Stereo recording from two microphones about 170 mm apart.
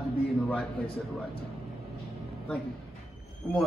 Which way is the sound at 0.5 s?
5° left (ahead or behind).